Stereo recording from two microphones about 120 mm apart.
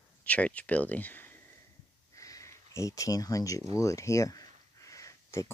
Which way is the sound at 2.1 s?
25° left (ahead or behind).